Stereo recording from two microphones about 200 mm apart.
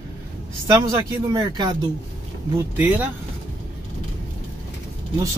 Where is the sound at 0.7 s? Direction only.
20° right (ahead or behind).